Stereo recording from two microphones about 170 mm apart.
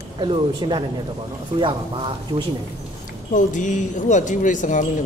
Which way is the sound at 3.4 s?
45° left (ahead or behind).